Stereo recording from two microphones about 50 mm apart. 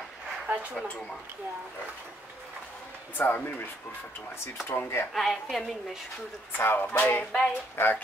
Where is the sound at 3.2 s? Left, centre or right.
Left.